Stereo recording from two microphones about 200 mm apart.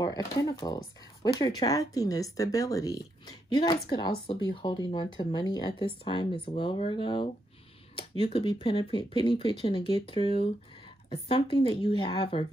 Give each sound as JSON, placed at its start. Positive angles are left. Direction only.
{"t": 0.0, "sound": "speech", "side_deg": 20}